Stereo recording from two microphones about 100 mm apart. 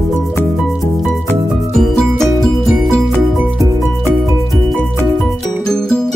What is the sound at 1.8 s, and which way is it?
Music, centre (ahead or behind).